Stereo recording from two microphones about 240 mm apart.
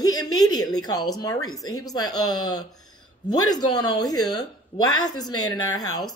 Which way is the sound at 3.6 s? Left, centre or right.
Centre.